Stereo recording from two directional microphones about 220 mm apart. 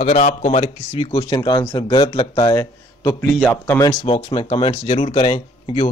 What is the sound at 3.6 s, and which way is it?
A man's voice, 15° left (ahead or behind).